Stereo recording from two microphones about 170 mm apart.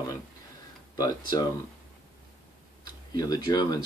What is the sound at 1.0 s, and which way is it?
Speech, 25° left (ahead or behind).